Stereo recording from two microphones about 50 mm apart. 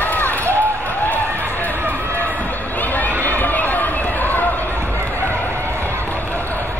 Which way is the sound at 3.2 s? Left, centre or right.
Left.